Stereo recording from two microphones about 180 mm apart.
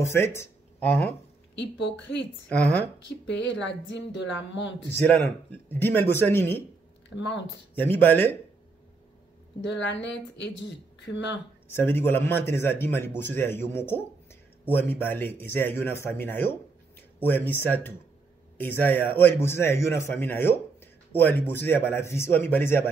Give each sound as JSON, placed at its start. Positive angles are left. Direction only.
{"t": 0.1, "sound": "speech", "side_deg": 15}
{"t": 1.6, "sound": "speech", "side_deg": 80}
{"t": 2.5, "sound": "speech", "side_deg": 5}
{"t": 3.1, "sound": "speech", "side_deg": 85}
{"t": 5.0, "sound": "speech", "side_deg": 10}
{"t": 7.2, "sound": "speech", "side_deg": 85}
{"t": 7.7, "sound": "speech", "side_deg": 10}
{"t": 9.7, "sound": "speech", "side_deg": 80}
{"t": 11.7, "sound": "speech", "side_deg": 10}